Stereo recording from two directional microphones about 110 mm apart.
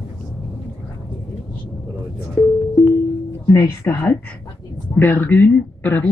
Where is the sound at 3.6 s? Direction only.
20° left (ahead or behind).